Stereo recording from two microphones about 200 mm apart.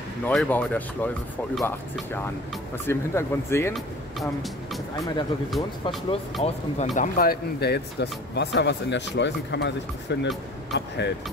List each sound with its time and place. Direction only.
0.2 s speech: 5° left (ahead or behind)
3.7 s speech: centre (ahead or behind)
5.5 s speech: centre (ahead or behind)
7.0 s speech: 45° left (ahead or behind)